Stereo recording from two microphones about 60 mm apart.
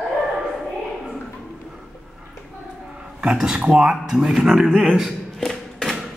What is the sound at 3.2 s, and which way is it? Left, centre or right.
Speech, centre.